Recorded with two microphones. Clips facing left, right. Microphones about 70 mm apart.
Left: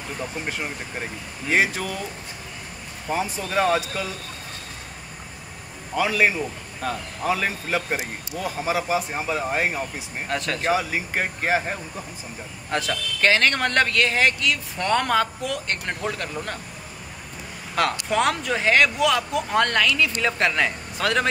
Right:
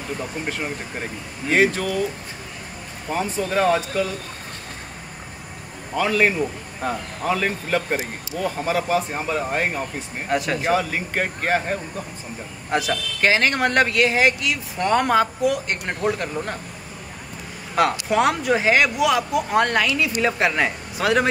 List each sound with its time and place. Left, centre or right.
0.5 s a man's voice: centre
3.1 s a man's voice: centre
5.9 s a man's voice: centre
6.8 s speech: centre
7.2 s a man's voice: centre
10.2 s speech: centre
10.7 s a man's voice: centre
12.7 s speech: centre
17.7 s speech: centre